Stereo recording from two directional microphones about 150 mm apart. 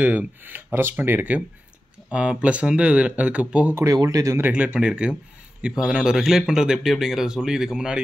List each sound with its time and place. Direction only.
0.0 s speech: 10° right (ahead or behind)
3.8 s speech: 25° right (ahead or behind)
4.5 s speech: 10° right (ahead or behind)